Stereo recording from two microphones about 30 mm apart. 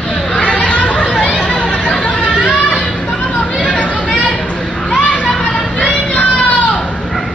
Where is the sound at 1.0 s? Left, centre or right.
Left.